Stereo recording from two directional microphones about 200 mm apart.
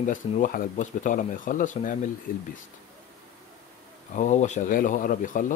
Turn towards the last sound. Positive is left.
turn(degrees=40)  # may be behind; listen again after turning